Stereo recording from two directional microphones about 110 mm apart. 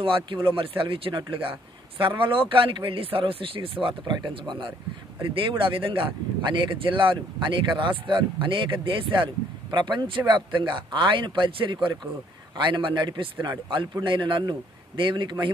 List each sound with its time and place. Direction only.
0.0 s speech: 50° right (ahead or behind)
4.0 s speech: 45° right (ahead or behind)